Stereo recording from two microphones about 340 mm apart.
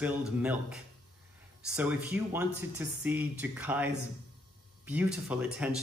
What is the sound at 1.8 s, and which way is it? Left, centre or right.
A man's voice, centre.